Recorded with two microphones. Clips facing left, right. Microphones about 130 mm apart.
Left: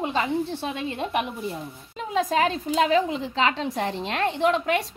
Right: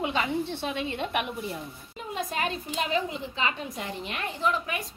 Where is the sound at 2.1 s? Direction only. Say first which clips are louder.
Left 8 dB; 90° left.